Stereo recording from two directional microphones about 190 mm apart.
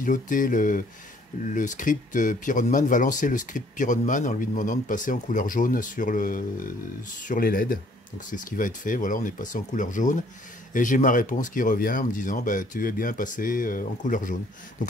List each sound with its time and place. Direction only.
0.0 s speech: 45° left (ahead or behind)